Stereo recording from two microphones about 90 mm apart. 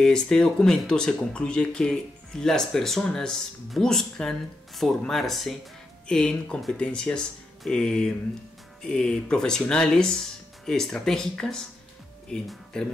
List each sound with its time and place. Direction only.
0.0 s speech: 10° left (ahead or behind)